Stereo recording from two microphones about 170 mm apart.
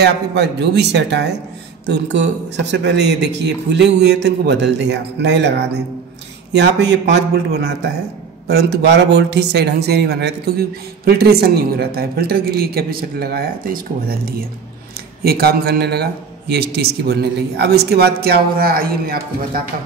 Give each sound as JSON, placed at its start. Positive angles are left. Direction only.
{"t": 0.0, "sound": "a man's voice", "side_deg": -85}